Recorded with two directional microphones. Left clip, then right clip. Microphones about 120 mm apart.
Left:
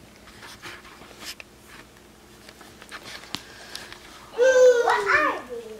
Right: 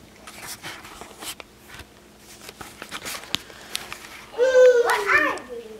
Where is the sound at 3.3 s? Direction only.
30° right (ahead or behind).